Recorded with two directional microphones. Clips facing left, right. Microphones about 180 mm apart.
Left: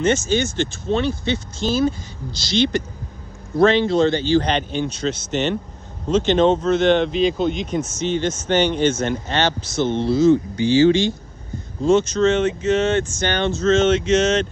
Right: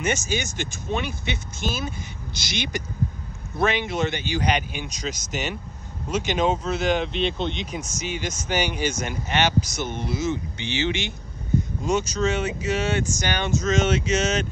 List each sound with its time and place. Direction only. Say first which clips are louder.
0.0 s speech: left 7 dB; 15° right (ahead or behind); by 7.6 s centre (ahead or behind)
7.9 s speech: left 9 dB; 10° right (ahead or behind)